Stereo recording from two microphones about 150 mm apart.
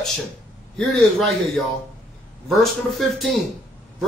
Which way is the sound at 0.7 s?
Centre (ahead or behind).